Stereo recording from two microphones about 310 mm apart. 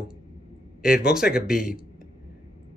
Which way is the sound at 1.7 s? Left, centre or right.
Left.